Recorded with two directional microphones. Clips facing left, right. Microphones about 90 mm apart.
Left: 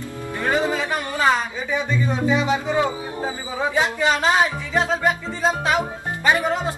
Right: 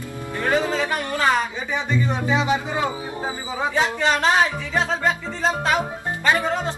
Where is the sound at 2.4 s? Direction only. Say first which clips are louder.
Left 1 dB; 15° right (ahead or behind).